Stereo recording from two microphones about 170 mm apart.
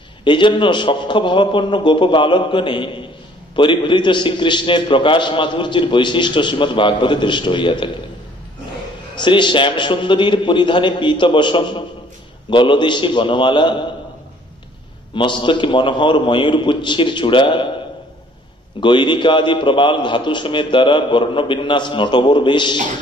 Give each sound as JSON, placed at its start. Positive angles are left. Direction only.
{"t": 0.2, "sound": "a man's voice", "side_deg": 25}
{"t": 9.2, "sound": "a man's voice", "side_deg": 30}
{"t": 15.1, "sound": "a man's voice", "side_deg": 30}
{"t": 18.8, "sound": "a man's voice", "side_deg": 30}